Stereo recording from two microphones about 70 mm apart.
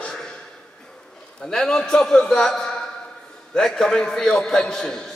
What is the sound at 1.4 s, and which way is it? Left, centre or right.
A man's voice, centre.